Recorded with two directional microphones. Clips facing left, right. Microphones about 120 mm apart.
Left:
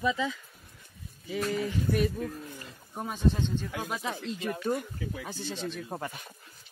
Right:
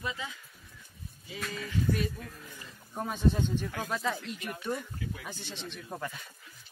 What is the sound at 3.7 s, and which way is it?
Speech, 15° left (ahead or behind).